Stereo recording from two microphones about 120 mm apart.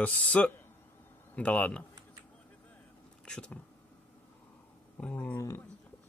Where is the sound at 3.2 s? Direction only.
10° left (ahead or behind).